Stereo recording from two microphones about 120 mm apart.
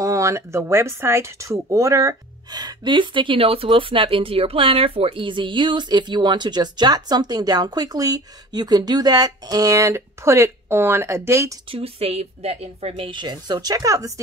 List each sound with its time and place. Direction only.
0.0 s speech: 25° right (ahead or behind)
11.7 s speech: 55° right (ahead or behind); by 14.2 s 30° right (ahead or behind)